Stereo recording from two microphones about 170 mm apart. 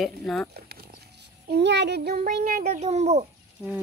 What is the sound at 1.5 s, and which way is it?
Speech, 90° right.